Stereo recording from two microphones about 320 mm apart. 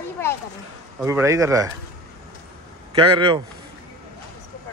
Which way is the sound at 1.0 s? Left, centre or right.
Centre.